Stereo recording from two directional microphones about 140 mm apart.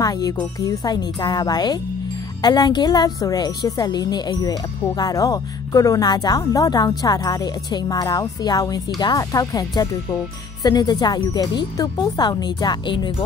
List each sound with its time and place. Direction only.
0.0 s a woman's voice: 25° left (ahead or behind)